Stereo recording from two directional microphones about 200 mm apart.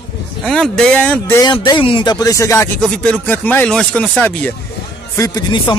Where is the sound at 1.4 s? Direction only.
20° left (ahead or behind); by 4.3 s 5° left (ahead or behind).